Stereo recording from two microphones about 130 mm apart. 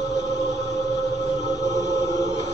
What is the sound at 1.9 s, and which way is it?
Choir, 25° left (ahead or behind).